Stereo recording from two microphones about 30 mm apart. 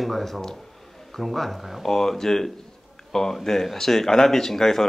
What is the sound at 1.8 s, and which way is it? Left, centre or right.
Speech, centre.